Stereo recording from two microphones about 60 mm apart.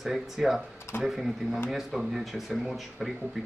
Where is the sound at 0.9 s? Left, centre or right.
Left.